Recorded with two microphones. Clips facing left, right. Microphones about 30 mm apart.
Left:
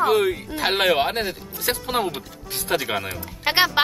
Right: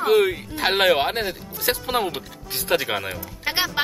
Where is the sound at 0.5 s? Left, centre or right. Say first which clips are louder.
Even; left.